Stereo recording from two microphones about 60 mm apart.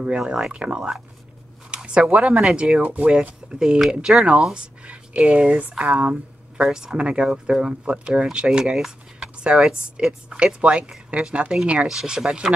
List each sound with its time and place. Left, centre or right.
0.0 s speech: centre
11.9 s speech: centre